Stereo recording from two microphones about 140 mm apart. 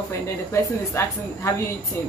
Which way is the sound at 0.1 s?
20° left (ahead or behind).